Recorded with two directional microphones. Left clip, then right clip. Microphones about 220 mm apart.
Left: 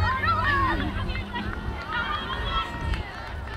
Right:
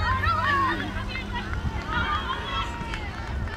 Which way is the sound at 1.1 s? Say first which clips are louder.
Even; 50° left (ahead or behind).